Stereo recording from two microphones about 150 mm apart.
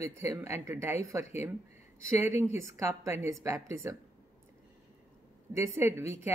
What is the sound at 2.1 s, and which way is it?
A woman's voice, 15° right (ahead or behind).